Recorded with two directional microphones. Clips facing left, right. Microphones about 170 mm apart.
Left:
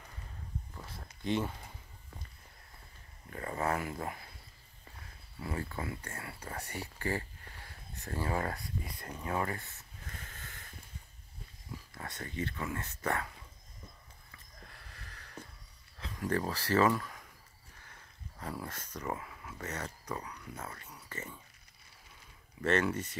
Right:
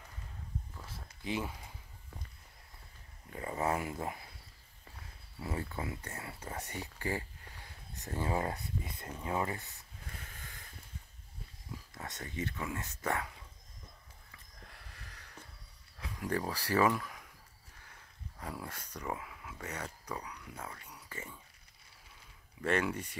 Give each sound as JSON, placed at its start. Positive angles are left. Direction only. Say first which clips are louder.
{"t": 1.2, "sound": "speech", "louder": "left 4 dB", "side_deg": -5}
{"t": 3.3, "sound": "speech", "louder": "even", "side_deg": -15}
{"t": 5.4, "sound": "speech", "louder": "even", "side_deg": -20}
{"t": 9.2, "sound": "a sound", "louder": "even", "side_deg": -20}
{"t": 12.1, "sound": "speech", "louder": "left 1 dB", "side_deg": -20}
{"t": 15.0, "sound": "a sound", "louder": "left 1 dB", "side_deg": -15}
{"t": 16.0, "sound": "speech", "louder": "left 2 dB", "side_deg": -15}
{"t": 18.4, "sound": "speech", "louder": "left 2 dB", "side_deg": -10}
{"t": 20.6, "sound": "a sound", "louder": "left 1 dB", "side_deg": -10}
{"t": 22.6, "sound": "speech", "louder": "left 2 dB", "side_deg": -10}